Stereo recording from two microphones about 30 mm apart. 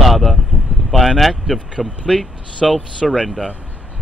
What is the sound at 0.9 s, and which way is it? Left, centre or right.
Speech, centre.